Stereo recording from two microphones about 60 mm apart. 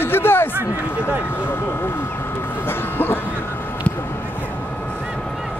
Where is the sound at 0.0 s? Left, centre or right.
Left.